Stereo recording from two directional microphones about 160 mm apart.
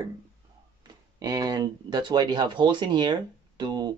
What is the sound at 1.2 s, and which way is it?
Speech, 25° right (ahead or behind).